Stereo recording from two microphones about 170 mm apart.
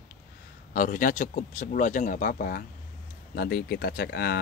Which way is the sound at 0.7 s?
50° left (ahead or behind).